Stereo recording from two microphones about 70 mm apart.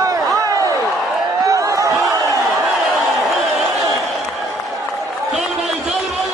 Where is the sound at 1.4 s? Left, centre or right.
Right.